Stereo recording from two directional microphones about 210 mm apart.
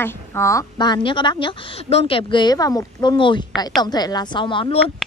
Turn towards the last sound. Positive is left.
turn(degrees=25)  # may be behind; listen again after turning